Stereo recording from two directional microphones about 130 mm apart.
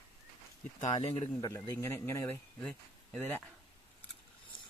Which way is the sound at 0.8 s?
55° left (ahead or behind).